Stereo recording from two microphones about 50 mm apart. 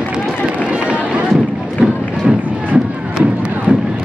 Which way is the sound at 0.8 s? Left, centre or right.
Right.